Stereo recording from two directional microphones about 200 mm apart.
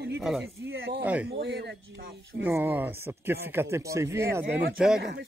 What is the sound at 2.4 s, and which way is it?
Speech, 10° right (ahead or behind).